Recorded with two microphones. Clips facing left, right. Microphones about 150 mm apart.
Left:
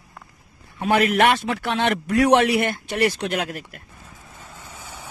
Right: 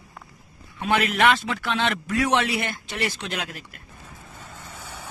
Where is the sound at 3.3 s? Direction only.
40° left (ahead or behind).